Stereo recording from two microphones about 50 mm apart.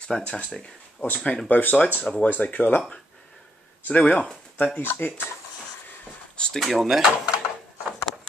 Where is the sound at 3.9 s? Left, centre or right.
Left.